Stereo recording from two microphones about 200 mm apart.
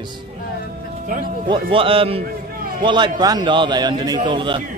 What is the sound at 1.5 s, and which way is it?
A man's voice, 25° right (ahead or behind).